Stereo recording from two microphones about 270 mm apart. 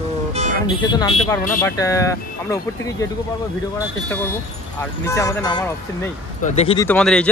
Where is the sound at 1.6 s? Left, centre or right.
Centre.